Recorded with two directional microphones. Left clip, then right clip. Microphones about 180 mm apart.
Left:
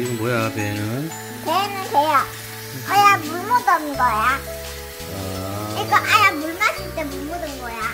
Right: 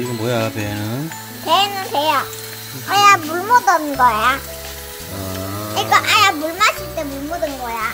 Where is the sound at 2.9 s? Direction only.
30° right (ahead or behind); by 4.4 s 50° right (ahead or behind).